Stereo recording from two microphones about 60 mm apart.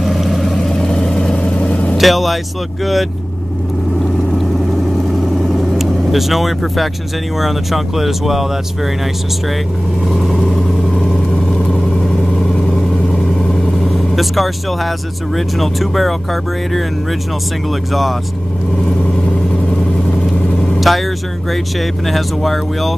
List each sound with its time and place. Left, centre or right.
0.0 s vehicle: centre
1.3 s vehicle: left
2.0 s speech: centre
4.3 s vehicle: centre
7.3 s speech: centre
10.0 s speech: centre
11.1 s vehicle: centre
13.3 s speech: centre
20.9 s speech: centre